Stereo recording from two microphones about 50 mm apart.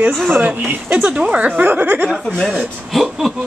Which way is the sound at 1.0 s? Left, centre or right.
Centre.